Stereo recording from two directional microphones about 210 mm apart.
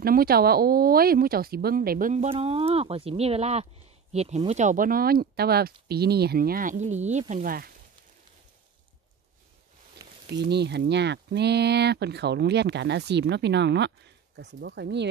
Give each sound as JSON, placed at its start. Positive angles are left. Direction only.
{"t": 0.0, "sound": "speech", "side_deg": -45}
{"t": 2.2, "sound": "speech", "side_deg": -25}
{"t": 10.3, "sound": "speech", "side_deg": -50}